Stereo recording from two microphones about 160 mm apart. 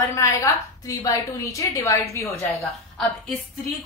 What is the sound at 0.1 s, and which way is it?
A woman's voice, 20° left (ahead or behind).